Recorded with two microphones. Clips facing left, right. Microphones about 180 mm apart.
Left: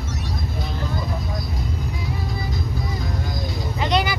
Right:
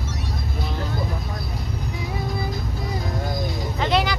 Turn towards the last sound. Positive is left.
turn(degrees=0)  # may be behind; listen again after turning